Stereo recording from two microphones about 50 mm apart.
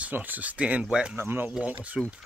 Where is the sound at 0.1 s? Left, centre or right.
Right.